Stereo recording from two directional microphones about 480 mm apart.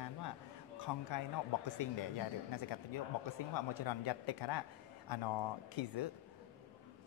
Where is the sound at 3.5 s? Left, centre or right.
Left.